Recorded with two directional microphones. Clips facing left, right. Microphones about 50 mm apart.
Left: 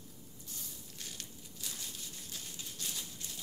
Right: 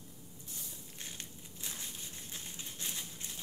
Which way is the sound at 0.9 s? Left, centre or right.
Right.